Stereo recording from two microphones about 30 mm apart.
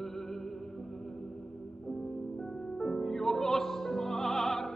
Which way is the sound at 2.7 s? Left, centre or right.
Centre.